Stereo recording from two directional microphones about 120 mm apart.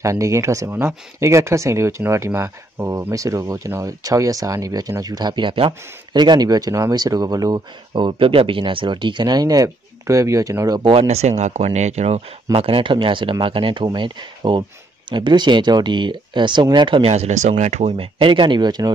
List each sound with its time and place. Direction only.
0.0 s speech: 25° right (ahead or behind)
7.9 s speech: 45° right (ahead or behind); by 10.8 s 25° right (ahead or behind)
10.8 s speech: 50° right (ahead or behind); by 12.2 s 65° right (ahead or behind)
12.5 s speech: 50° right (ahead or behind)
17.1 s speech: 70° right (ahead or behind); by 18.9 s 35° right (ahead or behind)